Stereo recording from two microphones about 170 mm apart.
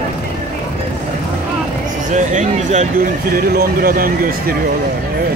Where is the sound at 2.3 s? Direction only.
45° right (ahead or behind).